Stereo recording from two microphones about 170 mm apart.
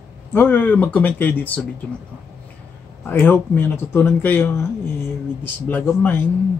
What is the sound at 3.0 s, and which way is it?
Speech, 10° left (ahead or behind).